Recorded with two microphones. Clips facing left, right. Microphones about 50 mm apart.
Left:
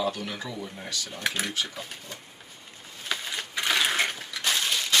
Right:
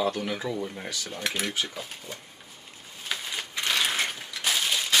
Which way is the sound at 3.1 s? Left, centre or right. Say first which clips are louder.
Left 1 dB; centre.